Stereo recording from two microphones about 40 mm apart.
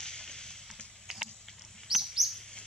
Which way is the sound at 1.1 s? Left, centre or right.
Centre.